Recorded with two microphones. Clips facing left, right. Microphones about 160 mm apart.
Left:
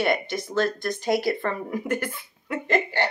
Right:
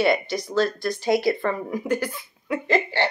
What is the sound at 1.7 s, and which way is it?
Speech, 35° right (ahead or behind).